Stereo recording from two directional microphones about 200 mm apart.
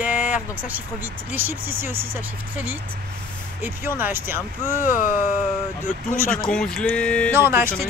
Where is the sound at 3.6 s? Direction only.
10° right (ahead or behind).